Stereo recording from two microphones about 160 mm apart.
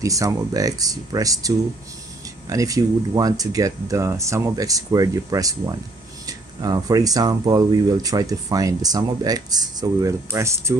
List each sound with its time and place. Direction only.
0.0 s speech: 20° right (ahead or behind)
2.5 s speech: 20° right (ahead or behind)